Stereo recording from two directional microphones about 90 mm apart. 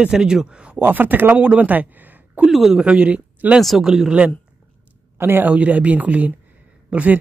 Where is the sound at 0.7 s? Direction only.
20° right (ahead or behind).